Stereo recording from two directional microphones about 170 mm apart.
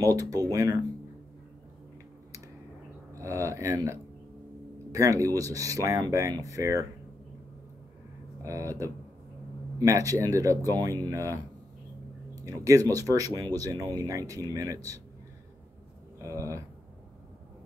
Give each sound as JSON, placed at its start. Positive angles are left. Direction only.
{"t": 0.0, "sound": "speech", "side_deg": -20}
{"t": 3.1, "sound": "speech", "side_deg": -15}
{"t": 8.4, "sound": "speech", "side_deg": -20}
{"t": 12.4, "sound": "speech", "side_deg": -20}
{"t": 16.2, "sound": "speech", "side_deg": -20}